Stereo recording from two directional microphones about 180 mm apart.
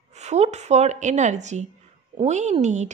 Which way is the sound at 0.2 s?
40° right (ahead or behind).